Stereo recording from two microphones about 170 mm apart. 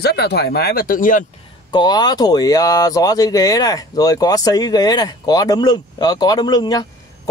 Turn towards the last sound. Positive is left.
turn(degrees=25)  # may be behind; listen again after turning